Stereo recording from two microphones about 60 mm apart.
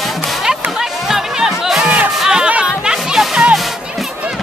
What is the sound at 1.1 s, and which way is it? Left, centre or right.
Music, centre.